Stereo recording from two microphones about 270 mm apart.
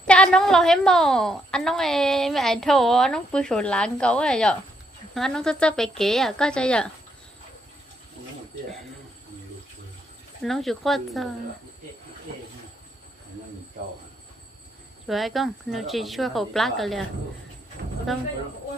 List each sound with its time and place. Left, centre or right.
0.0 s a woman's voice: centre
10.4 s a woman's voice: centre
15.0 s a woman's voice: centre
17.8 s a sound: right